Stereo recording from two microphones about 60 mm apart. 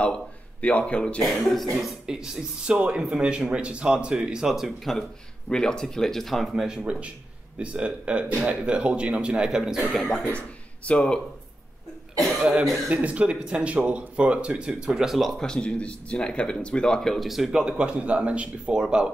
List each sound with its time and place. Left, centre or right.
0.6 s speech: left
1.2 s speech: centre
5.5 s speech: centre
6.5 s speech: centre
10.9 s speech: centre
12.9 s speech: right; by 15.4 s centre
15.4 s speech: centre